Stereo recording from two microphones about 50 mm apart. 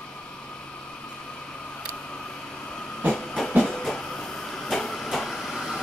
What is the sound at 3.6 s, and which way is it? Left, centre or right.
Train, centre.